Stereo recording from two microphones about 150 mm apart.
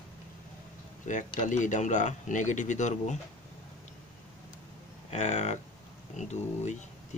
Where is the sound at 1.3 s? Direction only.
55° left (ahead or behind).